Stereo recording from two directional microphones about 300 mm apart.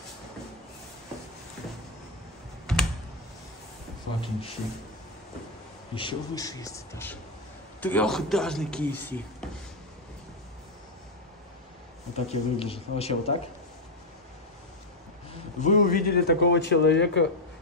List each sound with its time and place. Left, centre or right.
2.6 s computer keyboard: centre
4.2 s a man's voice: centre
5.9 s a man's voice: centre
12.3 s a man's voice: centre
15.6 s speech: left